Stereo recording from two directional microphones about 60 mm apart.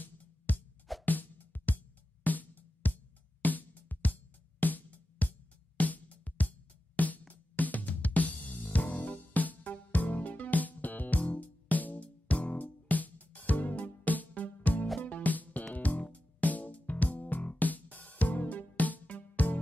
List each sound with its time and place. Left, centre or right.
0.0 s music: left